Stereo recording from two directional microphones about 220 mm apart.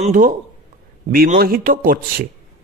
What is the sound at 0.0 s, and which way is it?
Speech, 40° right (ahead or behind).